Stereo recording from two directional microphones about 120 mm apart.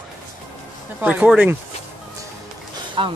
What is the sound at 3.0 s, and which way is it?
Speech, 45° right (ahead or behind).